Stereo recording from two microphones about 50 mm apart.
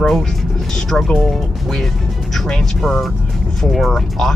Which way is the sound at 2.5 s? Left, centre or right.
Centre.